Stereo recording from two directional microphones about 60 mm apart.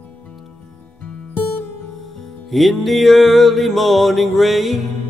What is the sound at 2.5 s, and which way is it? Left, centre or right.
Music, centre.